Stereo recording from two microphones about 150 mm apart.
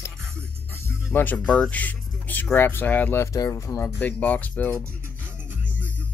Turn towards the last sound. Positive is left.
turn(degrees=-15)  # may be behind; listen again after turning